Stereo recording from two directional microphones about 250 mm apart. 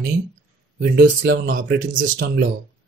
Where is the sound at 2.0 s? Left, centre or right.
Right.